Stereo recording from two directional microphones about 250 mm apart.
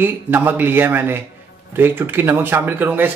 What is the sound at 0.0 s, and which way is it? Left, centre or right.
Speech, centre.